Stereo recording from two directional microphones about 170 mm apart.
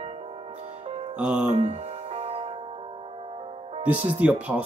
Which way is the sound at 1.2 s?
5° right (ahead or behind).